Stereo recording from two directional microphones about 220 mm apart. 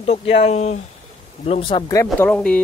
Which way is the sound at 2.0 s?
5° left (ahead or behind).